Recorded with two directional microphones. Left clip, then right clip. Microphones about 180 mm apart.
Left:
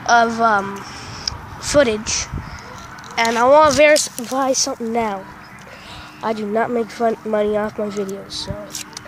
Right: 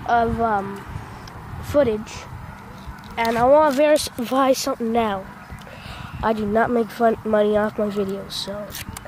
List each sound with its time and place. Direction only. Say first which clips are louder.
0.0 s speech: left 5 dB; 20° left (ahead or behind)
1.7 s speech: left 4 dB; 10° left (ahead or behind)
4.2 s speech: even; 15° right (ahead or behind)
6.2 s speech: even; 10° right (ahead or behind)